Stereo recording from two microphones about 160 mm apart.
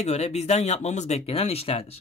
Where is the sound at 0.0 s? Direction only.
45° left (ahead or behind).